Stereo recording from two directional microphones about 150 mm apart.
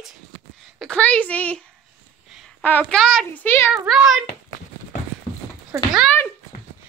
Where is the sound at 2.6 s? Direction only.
10° left (ahead or behind).